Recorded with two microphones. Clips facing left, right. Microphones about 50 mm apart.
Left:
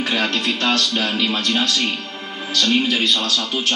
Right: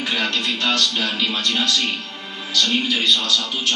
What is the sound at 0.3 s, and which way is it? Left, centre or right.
A man's voice, left.